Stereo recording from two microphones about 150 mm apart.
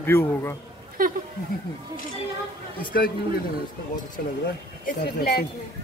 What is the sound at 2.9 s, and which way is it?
Speech, 90° left.